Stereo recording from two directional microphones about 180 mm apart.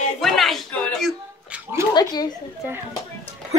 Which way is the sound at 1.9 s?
25° left (ahead or behind).